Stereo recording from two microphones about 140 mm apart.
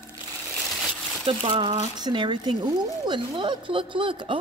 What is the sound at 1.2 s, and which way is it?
Speech, 45° right (ahead or behind).